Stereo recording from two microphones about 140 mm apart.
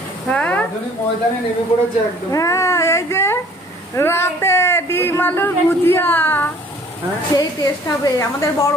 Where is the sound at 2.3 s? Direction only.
25° left (ahead or behind).